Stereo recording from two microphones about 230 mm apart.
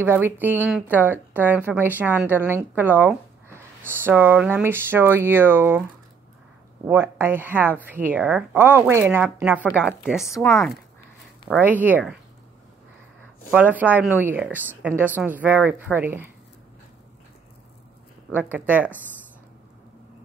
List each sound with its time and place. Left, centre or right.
0.0 s speech: centre
10.3 s speech: centre
11.4 s speech: centre
13.5 s a woman's voice: centre
18.3 s speech: centre